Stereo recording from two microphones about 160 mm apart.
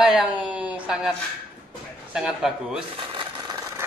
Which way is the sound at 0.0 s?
5° right (ahead or behind).